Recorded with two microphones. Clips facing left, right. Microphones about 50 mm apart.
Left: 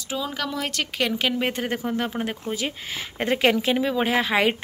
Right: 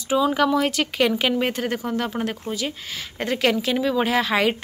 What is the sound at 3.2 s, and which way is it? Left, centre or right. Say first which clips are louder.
Speech: left 1 dB; centre.